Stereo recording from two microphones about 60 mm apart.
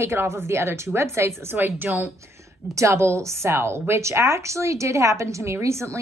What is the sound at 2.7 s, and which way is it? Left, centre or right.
A woman's voice, right.